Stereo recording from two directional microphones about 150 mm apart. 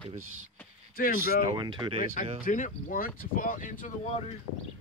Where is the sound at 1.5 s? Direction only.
30° right (ahead or behind).